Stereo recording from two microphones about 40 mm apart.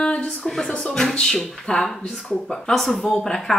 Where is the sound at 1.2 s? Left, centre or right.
Centre.